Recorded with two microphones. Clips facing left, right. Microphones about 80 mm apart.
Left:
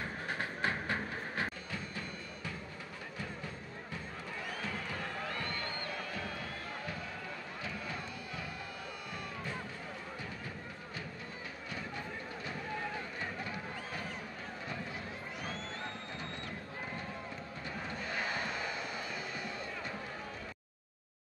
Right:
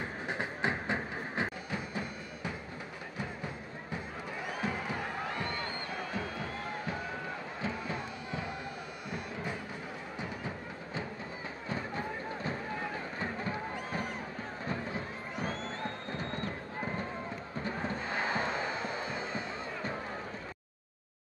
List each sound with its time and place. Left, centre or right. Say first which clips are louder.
0.0 s music: right 2 dB; centre
4.5 s crowd: right 6 dB; centre
9.1 s music: right 5 dB; centre
11.7 s music: right 6 dB; right
13.2 s a sound: right 5 dB; right
14.7 s music: right 6 dB; right
16.1 s a sound: right 6 dB; right
17.6 s music: right 5 dB; right